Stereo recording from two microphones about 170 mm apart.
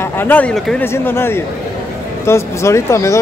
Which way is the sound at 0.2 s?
10° left (ahead or behind).